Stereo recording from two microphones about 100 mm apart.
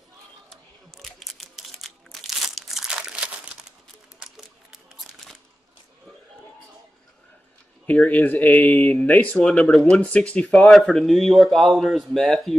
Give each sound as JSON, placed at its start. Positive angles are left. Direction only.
{"t": 0.5, "sound": "crumpling", "side_deg": 0}
{"t": 4.2, "sound": "a sound", "side_deg": -5}
{"t": 7.8, "sound": "speech", "side_deg": 15}